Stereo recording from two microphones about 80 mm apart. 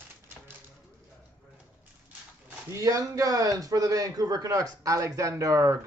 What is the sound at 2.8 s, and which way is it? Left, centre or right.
A man's voice, right.